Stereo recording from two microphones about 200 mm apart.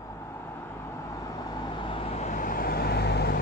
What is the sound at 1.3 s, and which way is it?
Vehicle, 20° left (ahead or behind).